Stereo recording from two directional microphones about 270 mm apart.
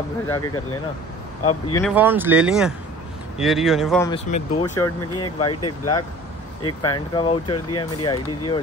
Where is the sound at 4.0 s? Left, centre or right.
Left.